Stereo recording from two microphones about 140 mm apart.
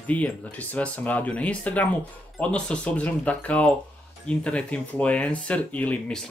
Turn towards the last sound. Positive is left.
turn(degrees=10)  # may be behind; listen again after turning